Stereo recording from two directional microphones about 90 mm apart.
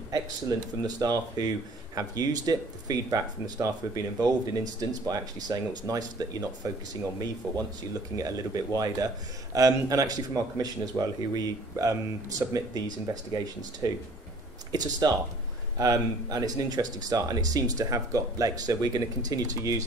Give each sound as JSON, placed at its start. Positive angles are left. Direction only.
{"t": 0.8, "sound": "a man's voice", "side_deg": -45}